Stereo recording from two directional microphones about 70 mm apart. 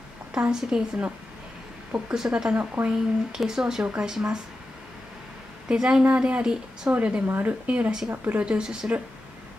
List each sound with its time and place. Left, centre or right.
0.3 s a woman's voice: centre
2.0 s a woman's voice: centre
2.5 s speech: right
2.9 s a woman's voice: centre
5.7 s a woman's voice: centre